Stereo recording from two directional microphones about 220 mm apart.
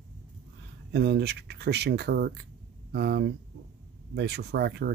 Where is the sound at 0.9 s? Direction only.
50° right (ahead or behind).